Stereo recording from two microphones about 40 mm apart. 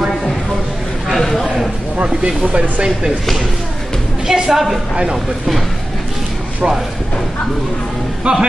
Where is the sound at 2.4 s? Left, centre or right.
Right.